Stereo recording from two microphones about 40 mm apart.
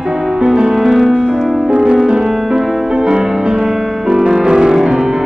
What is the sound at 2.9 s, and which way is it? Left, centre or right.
Music, centre.